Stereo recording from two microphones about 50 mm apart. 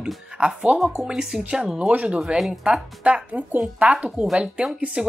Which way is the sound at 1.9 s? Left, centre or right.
Right.